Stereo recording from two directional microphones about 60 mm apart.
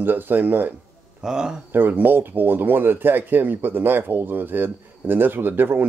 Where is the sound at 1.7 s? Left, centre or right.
Right.